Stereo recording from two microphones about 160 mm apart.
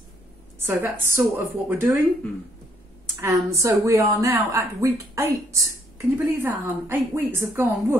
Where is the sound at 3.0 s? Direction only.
20° right (ahead or behind).